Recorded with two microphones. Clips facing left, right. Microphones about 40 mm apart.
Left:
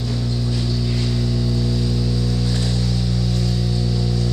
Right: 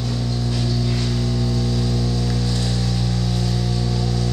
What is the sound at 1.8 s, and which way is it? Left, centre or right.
Music, right.